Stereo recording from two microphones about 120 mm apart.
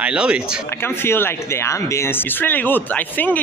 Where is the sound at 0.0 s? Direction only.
10° right (ahead or behind).